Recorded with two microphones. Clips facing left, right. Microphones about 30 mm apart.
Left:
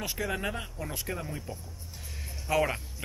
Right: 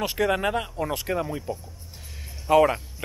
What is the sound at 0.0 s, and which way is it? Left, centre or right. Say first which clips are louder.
Speech: right 9 dB; right.